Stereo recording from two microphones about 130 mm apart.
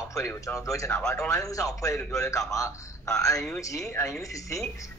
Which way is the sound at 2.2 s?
25° left (ahead or behind).